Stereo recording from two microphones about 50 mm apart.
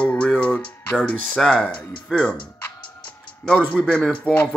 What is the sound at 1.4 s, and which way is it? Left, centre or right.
Speech, centre.